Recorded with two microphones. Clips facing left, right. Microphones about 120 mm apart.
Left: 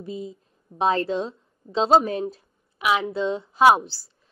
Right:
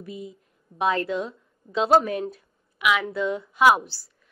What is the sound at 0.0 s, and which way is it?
A woman's voice, 30° left (ahead or behind).